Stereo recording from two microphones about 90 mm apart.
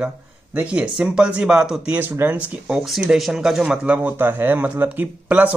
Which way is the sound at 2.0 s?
20° right (ahead or behind).